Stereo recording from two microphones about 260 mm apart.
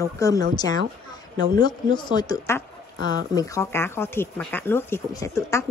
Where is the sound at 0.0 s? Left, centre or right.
Centre.